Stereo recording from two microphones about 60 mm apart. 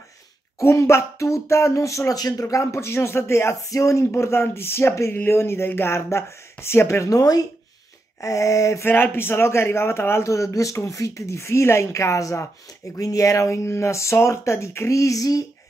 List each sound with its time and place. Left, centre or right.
0.6 s speech: left
3.7 s speech: left
5.1 s speech: left
7.1 s speech: left
8.2 s speech: left
8.8 s speech: left